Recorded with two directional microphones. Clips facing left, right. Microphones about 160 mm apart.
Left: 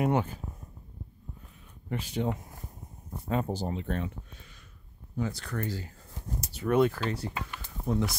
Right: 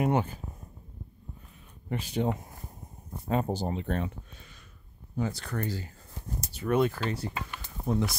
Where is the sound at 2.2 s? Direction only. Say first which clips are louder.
Right 2 dB; 35° right (ahead or behind).